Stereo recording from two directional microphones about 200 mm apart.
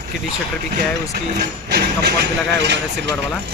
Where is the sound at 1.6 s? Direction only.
55° right (ahead or behind).